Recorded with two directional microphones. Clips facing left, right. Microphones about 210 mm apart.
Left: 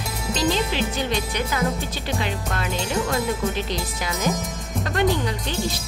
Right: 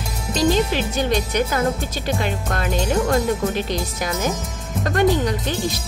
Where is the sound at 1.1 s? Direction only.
45° right (ahead or behind).